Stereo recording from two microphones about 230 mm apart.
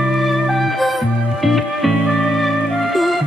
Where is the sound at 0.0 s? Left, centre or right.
Centre.